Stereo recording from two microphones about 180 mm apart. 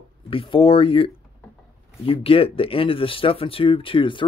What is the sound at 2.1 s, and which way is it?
Speech, 30° left (ahead or behind).